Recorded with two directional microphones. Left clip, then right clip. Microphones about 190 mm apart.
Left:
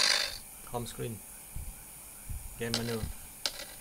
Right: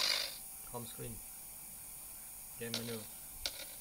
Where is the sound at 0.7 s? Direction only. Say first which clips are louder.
Left 9 dB; 25° left (ahead or behind).